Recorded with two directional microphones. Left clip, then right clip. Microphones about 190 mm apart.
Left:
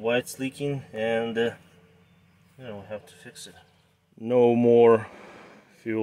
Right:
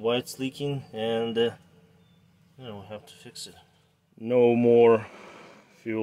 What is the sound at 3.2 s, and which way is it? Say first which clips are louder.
Speech: right 2 dB; 25° right (ahead or behind).